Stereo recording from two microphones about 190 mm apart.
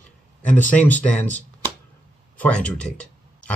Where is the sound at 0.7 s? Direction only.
10° left (ahead or behind).